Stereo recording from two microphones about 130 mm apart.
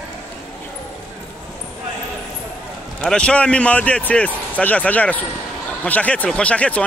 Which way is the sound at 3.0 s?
10° left (ahead or behind).